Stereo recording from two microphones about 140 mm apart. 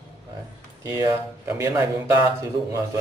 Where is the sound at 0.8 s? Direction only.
20° right (ahead or behind).